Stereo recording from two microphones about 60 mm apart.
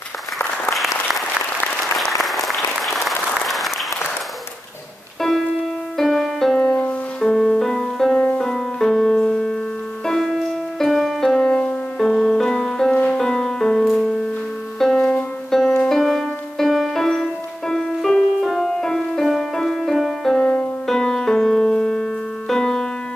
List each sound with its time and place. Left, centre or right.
2.2 s applause: centre
5.9 s music: centre
6.6 s music: left
7.2 s music: centre
20.3 s music: left
20.8 s music: centre